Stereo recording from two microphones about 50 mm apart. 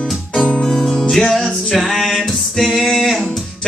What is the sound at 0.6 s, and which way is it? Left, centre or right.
Music, centre.